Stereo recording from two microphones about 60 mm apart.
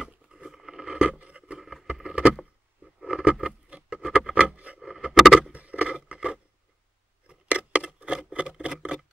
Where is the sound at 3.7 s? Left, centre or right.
Centre.